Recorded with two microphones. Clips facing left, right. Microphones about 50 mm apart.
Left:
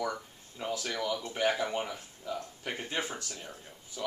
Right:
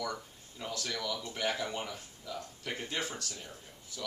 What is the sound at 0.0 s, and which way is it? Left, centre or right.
Speech, left.